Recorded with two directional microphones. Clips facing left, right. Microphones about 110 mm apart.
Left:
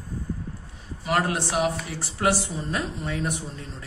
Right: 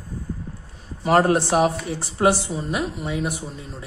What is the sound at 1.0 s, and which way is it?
Speech, 35° right (ahead or behind).